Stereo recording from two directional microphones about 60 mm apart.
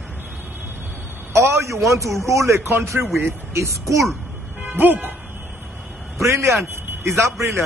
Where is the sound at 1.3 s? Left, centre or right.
Right.